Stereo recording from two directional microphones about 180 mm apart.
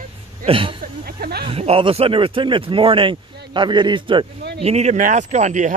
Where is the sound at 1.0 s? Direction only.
60° right (ahead or behind).